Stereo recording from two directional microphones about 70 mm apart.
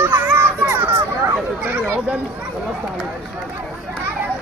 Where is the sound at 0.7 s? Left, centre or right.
Right.